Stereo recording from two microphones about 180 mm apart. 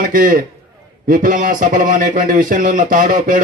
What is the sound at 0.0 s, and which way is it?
A man's voice, 50° right (ahead or behind).